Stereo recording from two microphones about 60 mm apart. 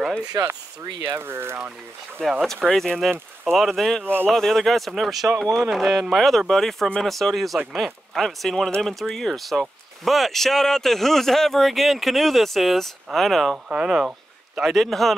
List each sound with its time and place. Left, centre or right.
1.1 s speech: right
2.4 s speech: centre
4.0 s speech: right
4.3 s speech: centre
13.7 s speech: centre
14.6 s speech: centre